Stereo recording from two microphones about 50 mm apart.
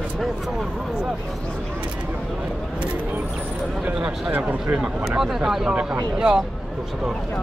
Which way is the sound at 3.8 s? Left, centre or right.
Right.